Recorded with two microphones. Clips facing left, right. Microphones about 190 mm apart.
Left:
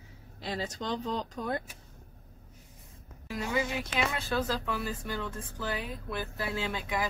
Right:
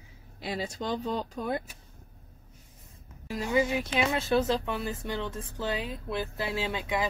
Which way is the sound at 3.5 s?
25° right (ahead or behind).